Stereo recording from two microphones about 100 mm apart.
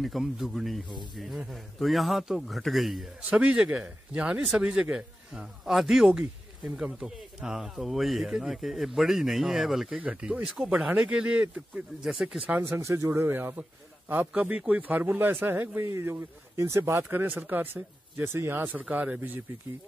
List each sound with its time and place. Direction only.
0.0 s speech: centre (ahead or behind)
3.3 s speech: 10° right (ahead or behind)
12.5 s speech: 25° right (ahead or behind)